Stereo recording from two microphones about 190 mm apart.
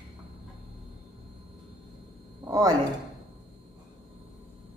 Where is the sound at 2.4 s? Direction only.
20° right (ahead or behind).